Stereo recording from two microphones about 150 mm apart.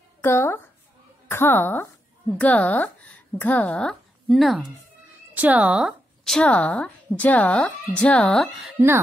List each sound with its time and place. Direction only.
0.2 s a woman's voice: 15° left (ahead or behind)
8.7 s speech: 15° right (ahead or behind)